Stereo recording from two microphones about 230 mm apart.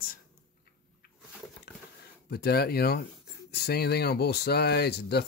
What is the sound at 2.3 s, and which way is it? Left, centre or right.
Speech, left.